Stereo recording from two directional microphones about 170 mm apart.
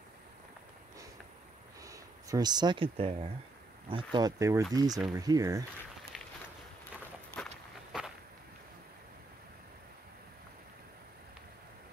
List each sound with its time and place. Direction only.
1.8 s speech: 20° right (ahead or behind)
6.1 s walk: centre (ahead or behind)
7.3 s walk: centre (ahead or behind)